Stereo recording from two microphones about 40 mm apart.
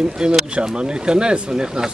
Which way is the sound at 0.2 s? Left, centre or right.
Centre.